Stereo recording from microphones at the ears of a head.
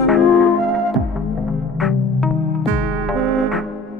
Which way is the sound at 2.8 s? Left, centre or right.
Right.